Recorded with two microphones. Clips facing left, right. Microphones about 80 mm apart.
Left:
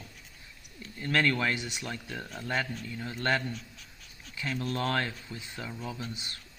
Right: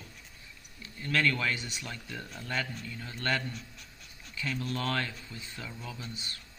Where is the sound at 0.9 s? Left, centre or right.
Left.